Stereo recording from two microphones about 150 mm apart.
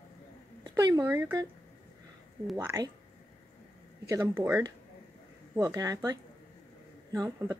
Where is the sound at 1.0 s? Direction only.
15° right (ahead or behind).